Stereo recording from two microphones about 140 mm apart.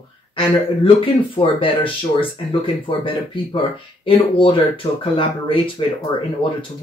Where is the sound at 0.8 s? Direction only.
40° left (ahead or behind).